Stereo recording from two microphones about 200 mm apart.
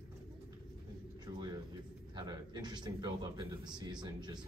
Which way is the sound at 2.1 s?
20° right (ahead or behind).